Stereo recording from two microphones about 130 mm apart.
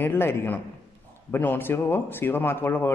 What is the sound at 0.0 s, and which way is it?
Speech, 15° left (ahead or behind).